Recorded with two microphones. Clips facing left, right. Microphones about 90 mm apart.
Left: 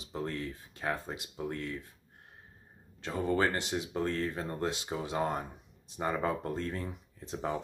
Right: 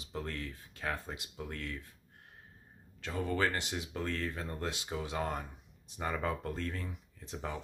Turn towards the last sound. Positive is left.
turn(degrees=30)  # may be behind; listen again after turning